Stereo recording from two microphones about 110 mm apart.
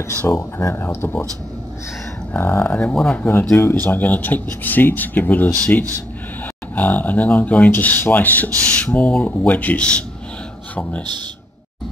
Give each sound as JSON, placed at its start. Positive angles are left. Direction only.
{"t": 0.1, "sound": "speech", "side_deg": 20}
{"t": 2.3, "sound": "speech", "side_deg": 20}
{"t": 2.9, "sound": "speech", "side_deg": 5}
{"t": 3.2, "sound": "speech", "side_deg": 20}